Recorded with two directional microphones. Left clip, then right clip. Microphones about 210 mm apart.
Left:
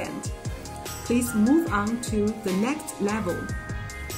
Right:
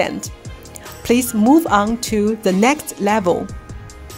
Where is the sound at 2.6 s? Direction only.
45° right (ahead or behind).